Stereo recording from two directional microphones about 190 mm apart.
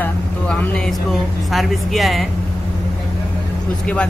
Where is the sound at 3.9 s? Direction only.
5° left (ahead or behind).